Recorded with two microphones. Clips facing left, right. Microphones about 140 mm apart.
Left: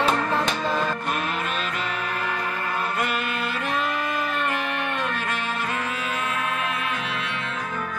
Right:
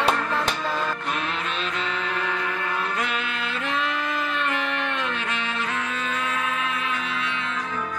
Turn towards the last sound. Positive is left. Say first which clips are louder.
# even
turn(degrees=5)  # may be behind; listen again after turning